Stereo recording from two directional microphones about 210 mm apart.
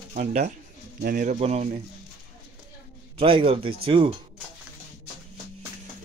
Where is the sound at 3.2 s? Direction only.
25° right (ahead or behind).